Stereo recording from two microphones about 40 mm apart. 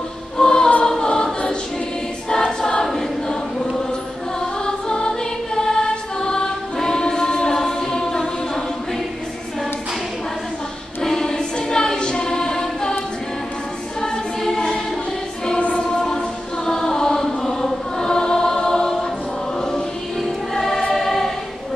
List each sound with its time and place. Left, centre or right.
0.4 s choir: centre
4.4 s music: centre
11.0 s choir: centre
14.4 s choir: centre
15.7 s music: centre
20.2 s choir: centre